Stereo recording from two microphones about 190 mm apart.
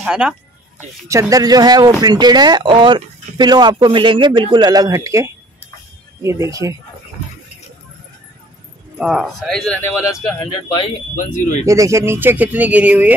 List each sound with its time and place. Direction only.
0.0 s speech: 5° right (ahead or behind)
1.0 s speech: 15° right (ahead or behind)
8.9 s speech: centre (ahead or behind)
11.6 s speech: 15° right (ahead or behind)